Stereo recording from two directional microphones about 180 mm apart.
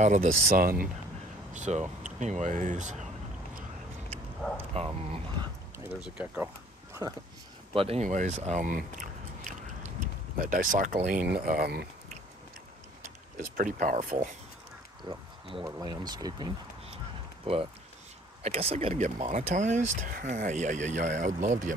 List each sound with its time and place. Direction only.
0.0 s speech: 40° right (ahead or behind)
0.5 s speech: 55° right (ahead or behind)
1.5 s speech: 40° right (ahead or behind)
4.7 s speech: 30° right (ahead or behind)
5.9 s speech: 5° right (ahead or behind)
7.7 s biting: 35° right (ahead or behind)
10.4 s speech: 50° right (ahead or behind)
13.6 s speech: 45° right (ahead or behind)
15.0 s speech: 30° right (ahead or behind)
18.4 s speech: 35° right (ahead or behind)